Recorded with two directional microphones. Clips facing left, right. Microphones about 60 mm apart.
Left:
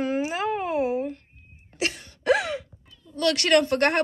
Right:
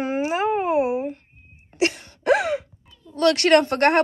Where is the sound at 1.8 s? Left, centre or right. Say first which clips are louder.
Right 4 dB; right.